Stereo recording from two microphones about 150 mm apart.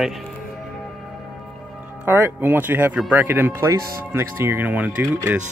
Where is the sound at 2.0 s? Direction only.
15° right (ahead or behind).